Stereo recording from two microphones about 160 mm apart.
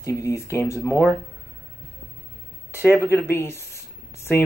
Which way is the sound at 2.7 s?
15° left (ahead or behind).